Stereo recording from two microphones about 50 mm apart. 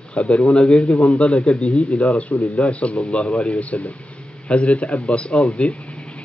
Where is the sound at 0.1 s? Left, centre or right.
Left.